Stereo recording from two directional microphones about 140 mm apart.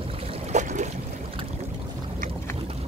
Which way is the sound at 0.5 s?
60° right (ahead or behind).